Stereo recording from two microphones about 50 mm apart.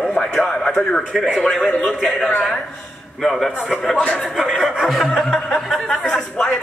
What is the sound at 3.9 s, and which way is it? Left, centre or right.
Speech, left.